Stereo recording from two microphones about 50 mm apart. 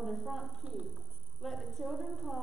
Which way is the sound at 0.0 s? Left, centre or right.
Centre.